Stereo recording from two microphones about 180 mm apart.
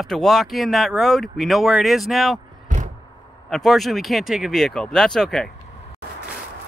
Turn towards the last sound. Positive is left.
turn(degrees=5)  # may be behind; listen again after turning